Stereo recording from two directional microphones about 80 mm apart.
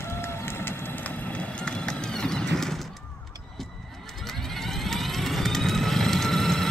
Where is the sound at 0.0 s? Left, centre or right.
Left; by 2.9 s centre.